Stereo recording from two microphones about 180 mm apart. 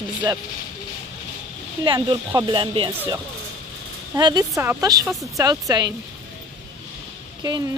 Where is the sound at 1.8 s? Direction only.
25° right (ahead or behind).